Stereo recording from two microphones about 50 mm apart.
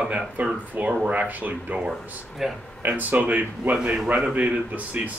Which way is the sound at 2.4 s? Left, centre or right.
Centre.